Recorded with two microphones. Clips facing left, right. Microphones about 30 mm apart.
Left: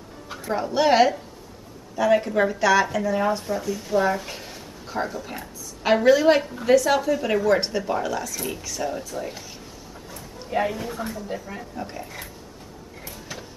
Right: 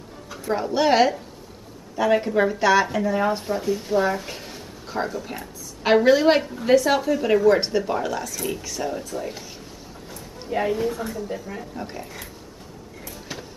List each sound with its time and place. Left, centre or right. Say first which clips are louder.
0.5 s speech: even; centre
2.6 s speech: even; centre
3.3 s speech: right 2 dB; centre
10.1 s a sound: left 1 dB; centre
11.2 s speech: right 1 dB; centre
11.8 s speech: even; centre
13.3 s a sound: right 2 dB; centre